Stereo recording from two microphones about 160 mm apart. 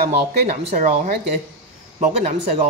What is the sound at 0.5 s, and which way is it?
Speech, 45° right (ahead or behind).